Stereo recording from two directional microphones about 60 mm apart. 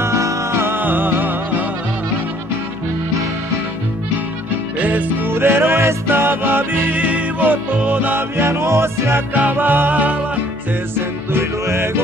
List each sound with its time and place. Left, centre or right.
0.0 s music: right
4.7 s music: right
5.3 s music: right
9.3 s music: right
11.0 s music: right